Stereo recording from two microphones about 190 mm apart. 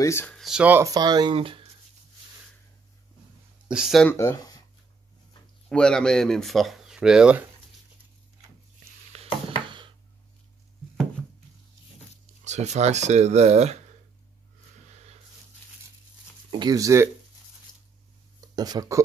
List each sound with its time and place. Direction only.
0.0 s speech: 15° left (ahead or behind)
0.4 s speech: 5° right (ahead or behind); by 1.7 s 30° right (ahead or behind)
3.6 s speech: 5° right (ahead or behind)
4.1 s speech: 15° left (ahead or behind)
5.7 s speech: 5° left (ahead or behind)
9.1 s a sound: 30° right (ahead or behind)
12.4 s speech: 35° right (ahead or behind)
16.4 s speech: 20° right (ahead or behind)
17.7 s a sound: 20° left (ahead or behind)
18.6 s speech: 20° right (ahead or behind)